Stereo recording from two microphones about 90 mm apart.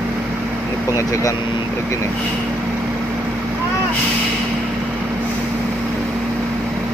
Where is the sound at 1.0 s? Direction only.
35° left (ahead or behind).